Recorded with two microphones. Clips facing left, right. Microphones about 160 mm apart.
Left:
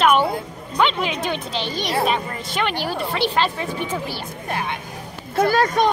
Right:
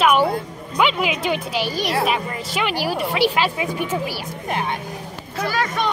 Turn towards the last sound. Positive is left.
turn(degrees=40)  # may be behind; listen again after turning